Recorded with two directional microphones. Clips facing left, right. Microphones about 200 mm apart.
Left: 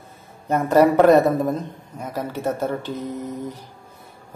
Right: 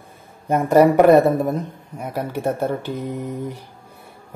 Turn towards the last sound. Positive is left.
turn(degrees=-15)  # may be behind; listen again after turning